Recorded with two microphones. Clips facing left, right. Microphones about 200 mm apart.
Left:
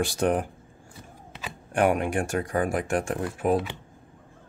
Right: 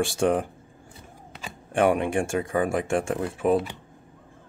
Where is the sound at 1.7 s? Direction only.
25° right (ahead or behind).